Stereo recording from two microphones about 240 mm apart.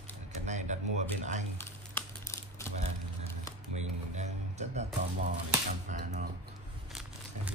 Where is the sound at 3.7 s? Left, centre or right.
Right.